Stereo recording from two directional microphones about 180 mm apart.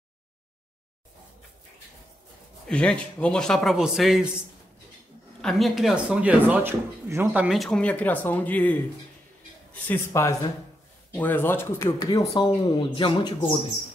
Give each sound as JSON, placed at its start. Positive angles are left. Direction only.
{"t": 2.7, "sound": "a man's voice", "side_deg": 5}
{"t": 5.4, "sound": "speech", "side_deg": 0}
{"t": 7.4, "sound": "speech", "side_deg": 0}
{"t": 9.8, "sound": "speech", "side_deg": 15}